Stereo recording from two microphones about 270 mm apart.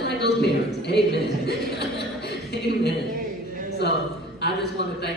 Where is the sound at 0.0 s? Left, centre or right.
Left.